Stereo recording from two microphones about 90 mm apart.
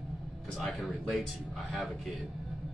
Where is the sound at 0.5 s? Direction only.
Centre (ahead or behind).